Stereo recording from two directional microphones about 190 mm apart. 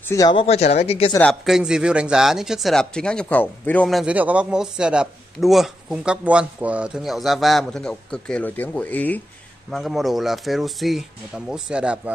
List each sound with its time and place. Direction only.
0.0 s speech: 15° left (ahead or behind)
0.4 s speech: 35° left (ahead or behind)
1.2 s speech: centre (ahead or behind)